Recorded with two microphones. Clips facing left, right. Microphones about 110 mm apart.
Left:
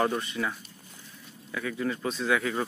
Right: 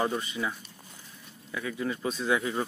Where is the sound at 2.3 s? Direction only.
25° right (ahead or behind).